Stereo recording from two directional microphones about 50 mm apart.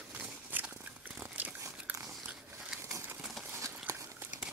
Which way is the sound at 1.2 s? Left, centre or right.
Right.